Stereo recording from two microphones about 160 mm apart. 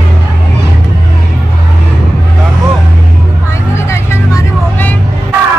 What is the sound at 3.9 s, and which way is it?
Vehicle, 15° left (ahead or behind).